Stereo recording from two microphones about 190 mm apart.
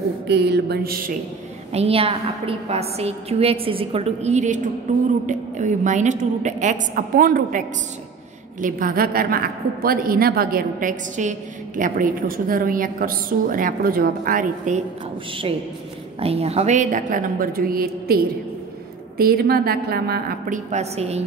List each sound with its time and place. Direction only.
0.3 s a sound: 60° right (ahead or behind)
1.7 s a woman's voice: 30° right (ahead or behind)
16.2 s a woman's voice: 30° right (ahead or behind)